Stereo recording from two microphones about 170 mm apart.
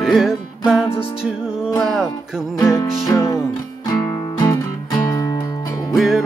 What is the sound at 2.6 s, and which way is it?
Music, 20° left (ahead or behind).